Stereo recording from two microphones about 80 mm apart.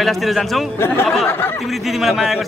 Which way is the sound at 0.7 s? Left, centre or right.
Left.